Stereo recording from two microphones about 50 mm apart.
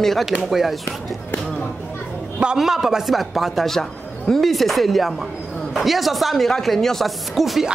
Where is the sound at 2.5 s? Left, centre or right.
Centre.